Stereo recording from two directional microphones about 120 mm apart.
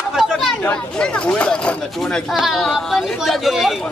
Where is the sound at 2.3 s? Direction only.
Centre (ahead or behind).